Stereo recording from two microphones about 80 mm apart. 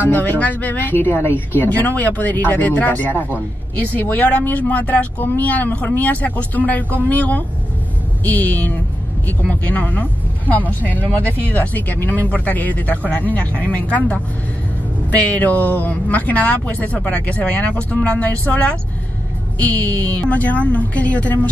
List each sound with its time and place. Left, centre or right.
0.0 s speech: left